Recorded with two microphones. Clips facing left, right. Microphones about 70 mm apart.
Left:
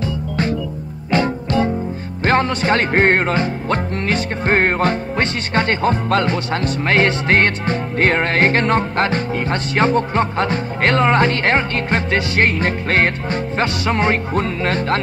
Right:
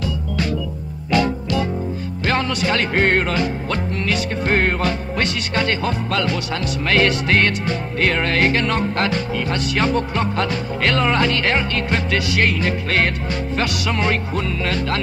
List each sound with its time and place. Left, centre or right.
1.1 s music: left